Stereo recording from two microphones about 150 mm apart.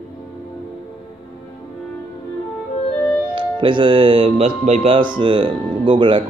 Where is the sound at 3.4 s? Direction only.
35° right (ahead or behind).